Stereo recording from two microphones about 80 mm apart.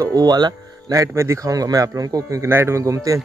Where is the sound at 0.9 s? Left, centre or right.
Right.